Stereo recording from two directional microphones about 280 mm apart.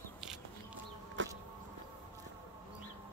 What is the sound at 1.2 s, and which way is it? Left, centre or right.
Insect, right.